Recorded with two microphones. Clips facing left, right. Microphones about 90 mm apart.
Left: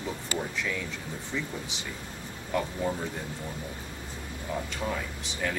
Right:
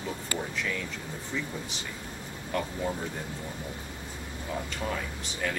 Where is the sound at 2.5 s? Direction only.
5° left (ahead or behind).